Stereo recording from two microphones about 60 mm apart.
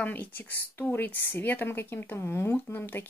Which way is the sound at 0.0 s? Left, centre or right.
Left.